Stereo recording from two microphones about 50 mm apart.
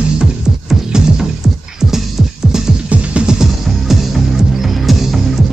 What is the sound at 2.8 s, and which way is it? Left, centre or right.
Music, right.